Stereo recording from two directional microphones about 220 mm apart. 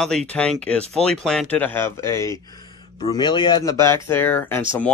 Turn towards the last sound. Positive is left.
turn(degrees=10)  # may be behind; listen again after turning